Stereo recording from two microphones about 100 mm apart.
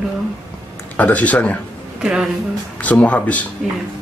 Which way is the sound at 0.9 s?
15° left (ahead or behind).